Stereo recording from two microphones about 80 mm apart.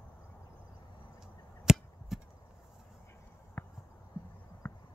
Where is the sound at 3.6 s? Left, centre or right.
Left.